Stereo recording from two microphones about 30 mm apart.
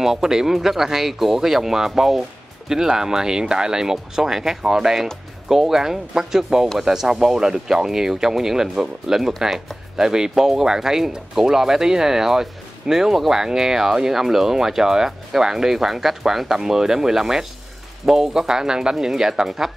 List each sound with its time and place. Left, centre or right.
0.0 s speech: centre